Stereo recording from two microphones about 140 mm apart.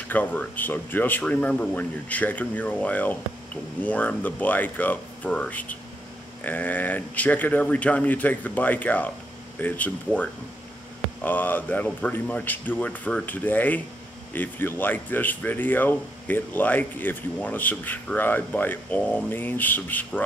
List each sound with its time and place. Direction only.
0.1 s speech: 10° left (ahead or behind)
11.2 s speech: 15° left (ahead or behind)